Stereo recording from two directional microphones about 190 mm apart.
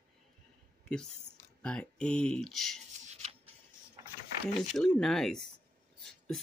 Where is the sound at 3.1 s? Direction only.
35° right (ahead or behind).